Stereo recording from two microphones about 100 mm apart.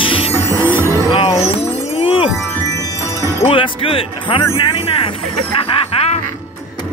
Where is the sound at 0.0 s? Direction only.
60° left (ahead or behind).